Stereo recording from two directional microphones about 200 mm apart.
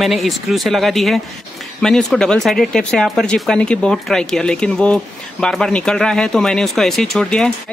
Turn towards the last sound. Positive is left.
turn(degrees=5)  # may be behind; listen again after turning